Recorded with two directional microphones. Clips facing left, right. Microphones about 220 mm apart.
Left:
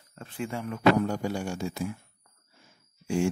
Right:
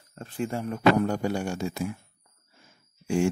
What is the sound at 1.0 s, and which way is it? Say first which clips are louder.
Speech: right 3 dB; 60° right (ahead or behind).